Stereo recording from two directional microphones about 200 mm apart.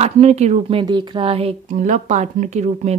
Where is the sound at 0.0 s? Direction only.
35° right (ahead or behind).